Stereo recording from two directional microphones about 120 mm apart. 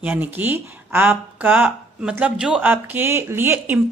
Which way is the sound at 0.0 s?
15° right (ahead or behind).